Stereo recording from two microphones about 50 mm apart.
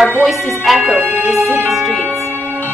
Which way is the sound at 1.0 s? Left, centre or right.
Right.